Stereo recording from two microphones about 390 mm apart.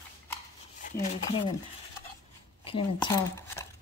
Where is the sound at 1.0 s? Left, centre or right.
Centre.